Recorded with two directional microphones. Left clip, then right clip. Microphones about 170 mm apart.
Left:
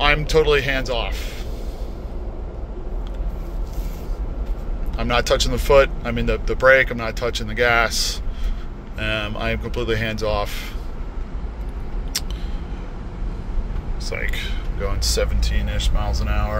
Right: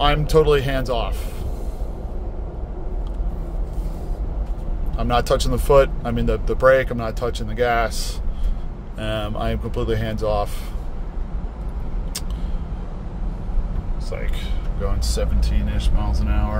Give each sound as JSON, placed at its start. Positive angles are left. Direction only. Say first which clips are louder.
{"t": 0.0, "sound": "speech", "louder": "even", "side_deg": -30}
{"t": 4.9, "sound": "speech", "louder": "even", "side_deg": -25}
{"t": 14.1, "sound": "speech", "louder": "left 5 dB", "side_deg": -10}